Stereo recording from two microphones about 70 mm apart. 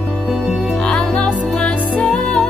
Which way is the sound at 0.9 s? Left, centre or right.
Centre.